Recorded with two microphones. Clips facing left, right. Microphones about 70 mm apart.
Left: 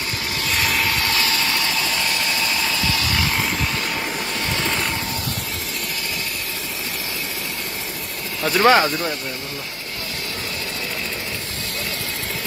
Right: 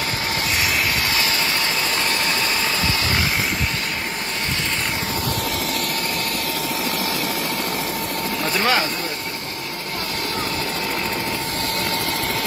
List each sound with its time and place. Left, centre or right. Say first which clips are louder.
0.6 s vehicle: left 2 dB; centre
1.1 s vehicle: even; right
8.5 s speech: left 7 dB; left